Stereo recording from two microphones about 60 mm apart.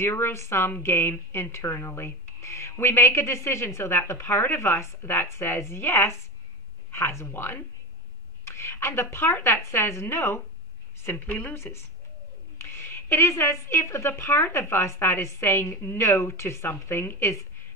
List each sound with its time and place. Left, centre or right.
0.0 s a woman's voice: left
1.9 s speech: left
2.4 s a woman's voice: left